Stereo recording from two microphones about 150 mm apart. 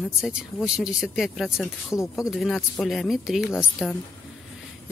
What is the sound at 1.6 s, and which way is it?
Speech, 20° left (ahead or behind).